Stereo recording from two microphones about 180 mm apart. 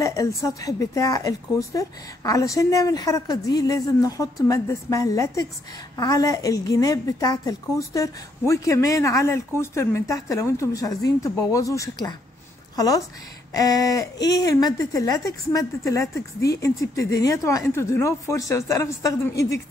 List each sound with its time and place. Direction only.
0.0 s a woman's voice: 20° left (ahead or behind)